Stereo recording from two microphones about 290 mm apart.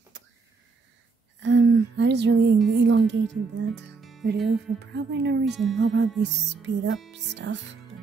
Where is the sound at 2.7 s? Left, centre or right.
Right.